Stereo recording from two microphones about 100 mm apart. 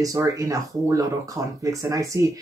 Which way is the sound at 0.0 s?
35° right (ahead or behind).